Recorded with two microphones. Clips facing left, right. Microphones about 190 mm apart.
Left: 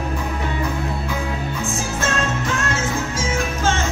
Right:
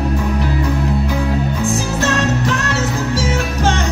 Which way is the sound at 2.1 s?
35° right (ahead or behind).